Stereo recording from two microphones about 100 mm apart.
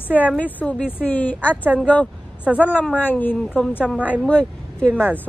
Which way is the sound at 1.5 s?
15° right (ahead or behind).